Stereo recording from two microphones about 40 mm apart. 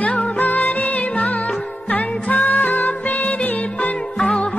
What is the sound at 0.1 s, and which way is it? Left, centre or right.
Music, left.